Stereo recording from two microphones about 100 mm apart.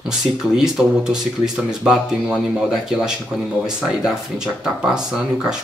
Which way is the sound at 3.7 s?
5° right (ahead or behind).